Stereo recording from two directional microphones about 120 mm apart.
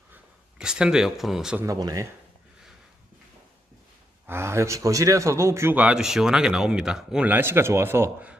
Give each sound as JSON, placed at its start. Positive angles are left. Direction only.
{"t": 0.1, "sound": "speech", "side_deg": -5}
{"t": 1.8, "sound": "speech", "side_deg": -30}
{"t": 4.3, "sound": "a man's voice", "side_deg": -20}
{"t": 5.8, "sound": "speech", "side_deg": -5}